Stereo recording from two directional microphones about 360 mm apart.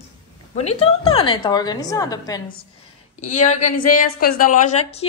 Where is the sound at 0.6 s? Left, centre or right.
Centre.